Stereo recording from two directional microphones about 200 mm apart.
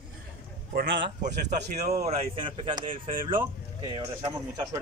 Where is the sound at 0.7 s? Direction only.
65° right (ahead or behind).